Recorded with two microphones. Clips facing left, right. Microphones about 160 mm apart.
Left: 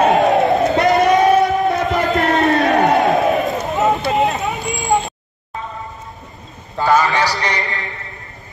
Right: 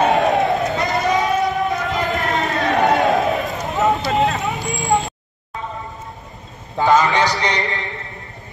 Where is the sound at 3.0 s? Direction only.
Centre (ahead or behind).